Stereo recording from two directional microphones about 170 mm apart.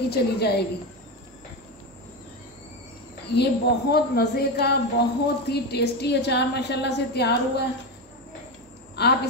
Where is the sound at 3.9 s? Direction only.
70° left (ahead or behind).